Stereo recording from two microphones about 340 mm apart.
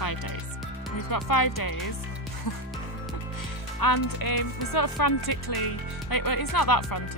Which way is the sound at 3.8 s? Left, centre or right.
Left.